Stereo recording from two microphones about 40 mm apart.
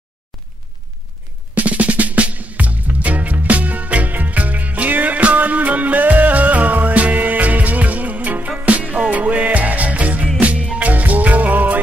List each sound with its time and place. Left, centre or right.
1.5 s music: right